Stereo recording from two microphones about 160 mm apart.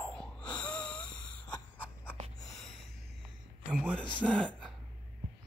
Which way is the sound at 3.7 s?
10° right (ahead or behind).